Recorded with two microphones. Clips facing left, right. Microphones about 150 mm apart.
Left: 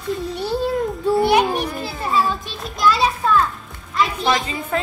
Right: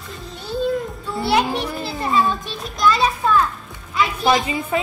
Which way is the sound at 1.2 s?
15° left (ahead or behind).